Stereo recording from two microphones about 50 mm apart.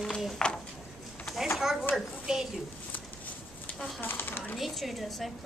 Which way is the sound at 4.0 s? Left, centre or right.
Left.